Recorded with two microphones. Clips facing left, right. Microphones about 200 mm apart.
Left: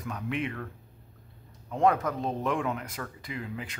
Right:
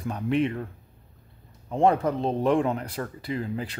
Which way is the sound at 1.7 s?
30° right (ahead or behind).